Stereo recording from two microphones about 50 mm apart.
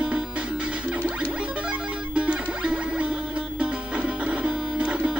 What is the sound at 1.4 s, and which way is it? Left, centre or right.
Music, right.